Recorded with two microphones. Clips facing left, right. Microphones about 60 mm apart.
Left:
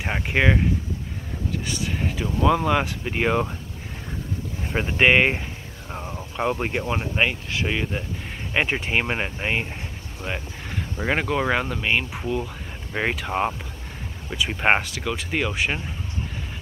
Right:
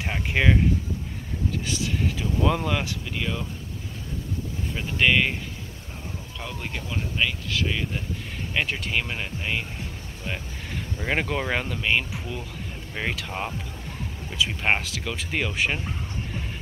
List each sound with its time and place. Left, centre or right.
0.0 s speech: centre
1.9 s a sound: centre
2.4 s speech: centre
3.1 s speech: left
4.7 s speech: left
10.2 s speech: centre
12.9 s speech: left
14.8 s speech: centre